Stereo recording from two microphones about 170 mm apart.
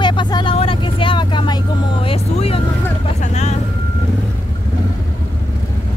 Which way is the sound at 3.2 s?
40° left (ahead or behind).